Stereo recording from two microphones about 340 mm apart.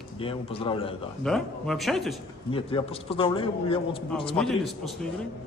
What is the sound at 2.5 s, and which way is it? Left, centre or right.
Speech, centre.